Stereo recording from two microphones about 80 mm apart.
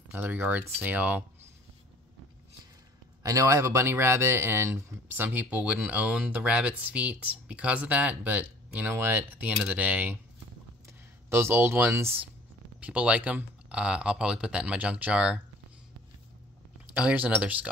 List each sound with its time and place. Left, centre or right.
0.1 s speech: right
3.2 s speech: right
5.1 s speech: right
11.2 s speech: right
12.8 s speech: centre
16.9 s speech: centre